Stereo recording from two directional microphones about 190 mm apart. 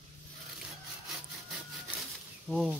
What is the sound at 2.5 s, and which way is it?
Speech, 5° right (ahead or behind).